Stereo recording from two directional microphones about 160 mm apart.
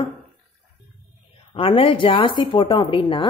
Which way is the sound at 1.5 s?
35° left (ahead or behind).